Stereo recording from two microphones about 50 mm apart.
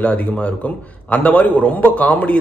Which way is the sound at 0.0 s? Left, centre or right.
Left.